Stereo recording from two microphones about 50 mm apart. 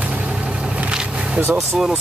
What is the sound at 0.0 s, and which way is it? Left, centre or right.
Vehicle, right.